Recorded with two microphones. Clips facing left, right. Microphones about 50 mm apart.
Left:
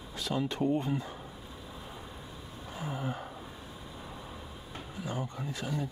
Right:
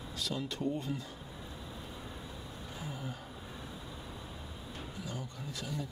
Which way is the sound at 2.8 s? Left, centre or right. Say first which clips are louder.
Left 7 dB; left.